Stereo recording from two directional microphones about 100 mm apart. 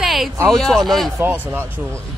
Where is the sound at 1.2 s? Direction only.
20° right (ahead or behind).